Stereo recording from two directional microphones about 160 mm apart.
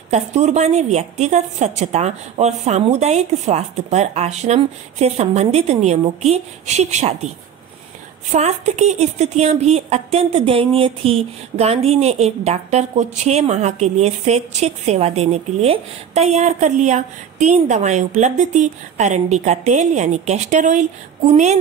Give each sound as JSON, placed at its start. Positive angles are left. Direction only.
{"t": 0.1, "sound": "a woman's voice", "side_deg": -45}
{"t": 8.3, "sound": "a woman's voice", "side_deg": -45}